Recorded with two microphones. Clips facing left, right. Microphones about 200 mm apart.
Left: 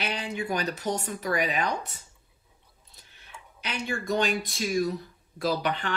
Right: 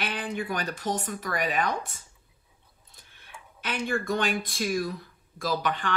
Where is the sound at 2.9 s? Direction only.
50° right (ahead or behind).